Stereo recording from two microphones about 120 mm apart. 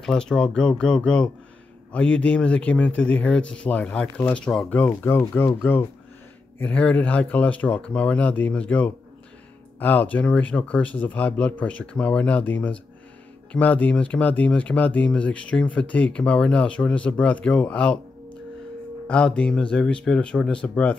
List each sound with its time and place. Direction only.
0.0 s speech: 5° left (ahead or behind)
19.0 s speech: 10° left (ahead or behind)